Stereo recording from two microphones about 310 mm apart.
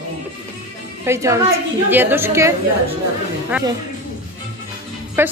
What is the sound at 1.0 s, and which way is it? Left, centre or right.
A woman's voice, centre.